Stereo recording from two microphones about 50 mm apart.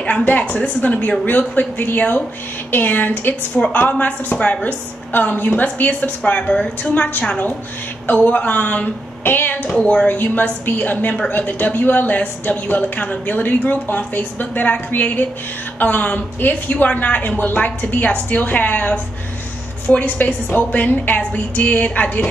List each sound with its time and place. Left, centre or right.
0.3 s a woman's voice: left
5.1 s a woman's voice: left
9.7 s a woman's voice: left